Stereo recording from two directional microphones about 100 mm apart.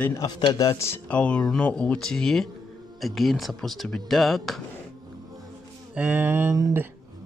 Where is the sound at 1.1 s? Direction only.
10° left (ahead or behind).